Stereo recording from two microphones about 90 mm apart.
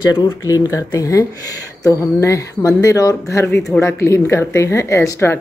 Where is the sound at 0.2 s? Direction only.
45° left (ahead or behind).